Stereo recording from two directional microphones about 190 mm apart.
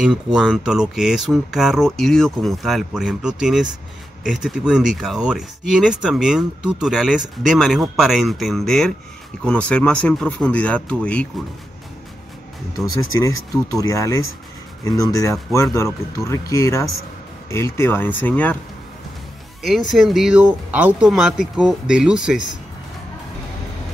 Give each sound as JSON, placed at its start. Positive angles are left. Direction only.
{"t": 0.0, "sound": "speech", "side_deg": -5}
{"t": 13.2, "sound": "speech", "side_deg": 15}
{"t": 19.6, "sound": "speech", "side_deg": 0}